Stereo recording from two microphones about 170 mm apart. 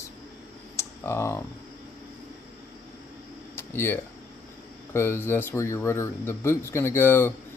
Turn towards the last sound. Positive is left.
turn(degrees=15)  # may be behind; listen again after turning